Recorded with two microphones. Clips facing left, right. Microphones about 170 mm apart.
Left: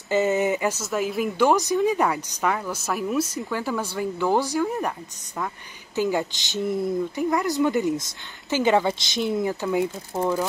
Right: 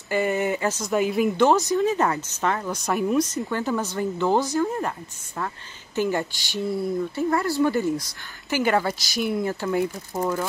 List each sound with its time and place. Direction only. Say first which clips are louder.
0.1 s a woman's voice: left 2 dB; 20° left (ahead or behind)
5.9 s speech: left 1 dB; 15° left (ahead or behind)